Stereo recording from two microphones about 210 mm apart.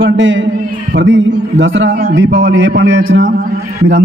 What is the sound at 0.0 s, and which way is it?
A man's voice, 60° right (ahead or behind).